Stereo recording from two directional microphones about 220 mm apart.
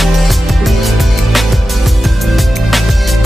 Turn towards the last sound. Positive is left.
turn(degrees=0)  # may be behind; listen again after turning